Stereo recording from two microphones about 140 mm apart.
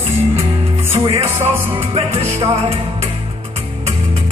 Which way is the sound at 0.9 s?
40° right (ahead or behind).